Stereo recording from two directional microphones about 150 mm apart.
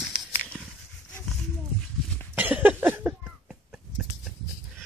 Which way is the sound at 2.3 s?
10° right (ahead or behind).